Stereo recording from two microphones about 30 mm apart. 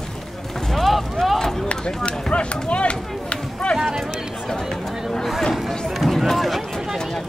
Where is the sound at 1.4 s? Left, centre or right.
Centre.